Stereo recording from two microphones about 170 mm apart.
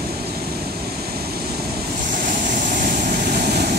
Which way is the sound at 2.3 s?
50° right (ahead or behind).